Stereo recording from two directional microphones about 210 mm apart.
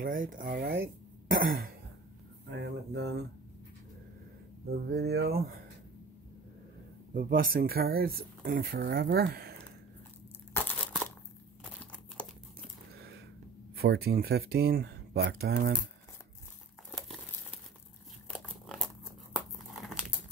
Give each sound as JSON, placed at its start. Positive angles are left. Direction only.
{"t": 0.0, "sound": "speech", "side_deg": -40}
{"t": 2.5, "sound": "speech", "side_deg": -55}
{"t": 4.6, "sound": "speech", "side_deg": -50}
{"t": 7.2, "sound": "speech", "side_deg": -45}
{"t": 10.5, "sound": "crumpling", "side_deg": 10}
{"t": 12.9, "sound": "a sound", "side_deg": -50}
{"t": 13.7, "sound": "speech", "side_deg": -50}
{"t": 18.3, "sound": "crumpling", "side_deg": 0}